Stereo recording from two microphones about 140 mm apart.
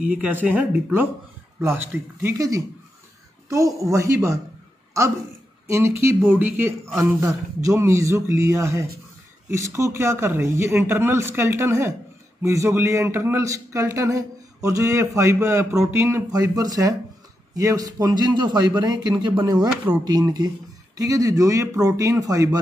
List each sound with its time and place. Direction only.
0.0 s a man's voice: 10° right (ahead or behind)
5.7 s a man's voice: 20° right (ahead or behind)